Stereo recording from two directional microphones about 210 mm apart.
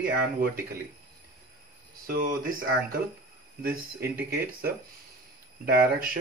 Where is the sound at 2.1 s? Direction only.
45° right (ahead or behind).